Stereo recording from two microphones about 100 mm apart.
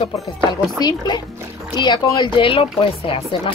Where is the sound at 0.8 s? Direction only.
45° left (ahead or behind).